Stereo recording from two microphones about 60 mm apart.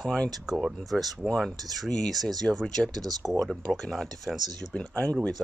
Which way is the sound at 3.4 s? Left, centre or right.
Centre.